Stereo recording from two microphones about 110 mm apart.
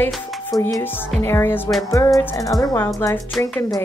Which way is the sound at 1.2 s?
20° left (ahead or behind).